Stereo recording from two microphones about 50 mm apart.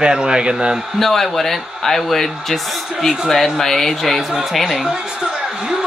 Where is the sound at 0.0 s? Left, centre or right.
Centre.